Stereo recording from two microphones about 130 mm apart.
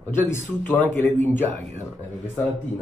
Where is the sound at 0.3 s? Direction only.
20° left (ahead or behind).